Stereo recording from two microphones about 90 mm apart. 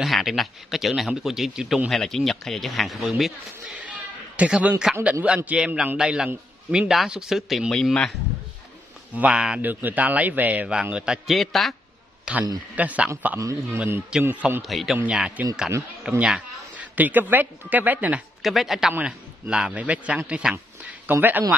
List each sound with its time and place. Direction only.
0.0 s a man's voice: centre (ahead or behind)
4.4 s a man's voice: 15° right (ahead or behind); by 8.2 s 5° left (ahead or behind)
9.1 s a man's voice: 15° right (ahead or behind)
9.6 s a man's voice: 20° right (ahead or behind)
11.2 s a man's voice: centre (ahead or behind)
12.3 s a man's voice: 10° right (ahead or behind)
13.4 s a man's voice: 35° right (ahead or behind)
14.2 s a man's voice: 20° right (ahead or behind)
14.6 s a man's voice: centre (ahead or behind); by 18.2 s 15° right (ahead or behind)
18.4 s a man's voice: centre (ahead or behind); by 21.5 s 20° right (ahead or behind)